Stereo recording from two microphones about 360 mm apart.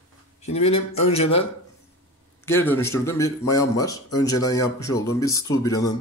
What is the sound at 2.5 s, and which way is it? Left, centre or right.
A man's voice, centre.